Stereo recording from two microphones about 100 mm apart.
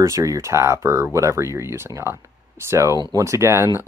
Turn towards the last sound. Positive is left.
turn(degrees=-25)  # may be behind; listen again after turning